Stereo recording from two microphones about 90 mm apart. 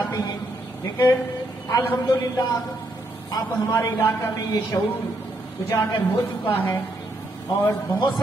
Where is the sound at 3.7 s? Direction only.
30° left (ahead or behind).